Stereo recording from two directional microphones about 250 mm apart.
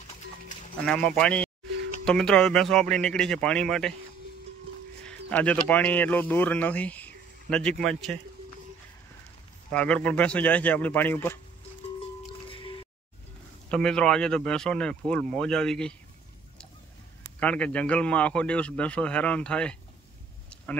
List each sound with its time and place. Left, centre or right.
0.8 s a man's voice: centre
5.0 s speech: centre
9.7 s a man's voice: centre
12.2 s music: left
13.7 s a man's voice: centre
17.4 s a man's voice: centre